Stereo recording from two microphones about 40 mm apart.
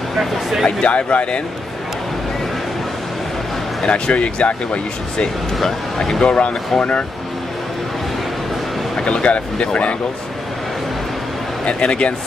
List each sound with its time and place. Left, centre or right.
0.2 s speech: centre
0.7 s speech: left
3.8 s speech: left
5.6 s speech: centre
6.2 s speech: left
9.0 s speech: left
11.6 s speech: left